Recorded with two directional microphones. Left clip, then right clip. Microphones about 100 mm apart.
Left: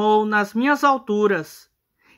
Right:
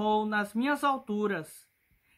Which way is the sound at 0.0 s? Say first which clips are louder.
Left 10 dB; 25° left (ahead or behind).